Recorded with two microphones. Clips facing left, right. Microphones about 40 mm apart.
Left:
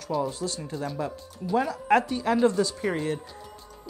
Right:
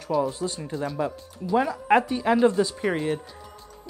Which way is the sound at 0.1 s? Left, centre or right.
Right.